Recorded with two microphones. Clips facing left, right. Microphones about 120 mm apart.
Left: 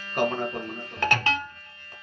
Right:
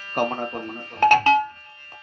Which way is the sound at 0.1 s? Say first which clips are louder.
Right 1 dB; 50° right (ahead or behind).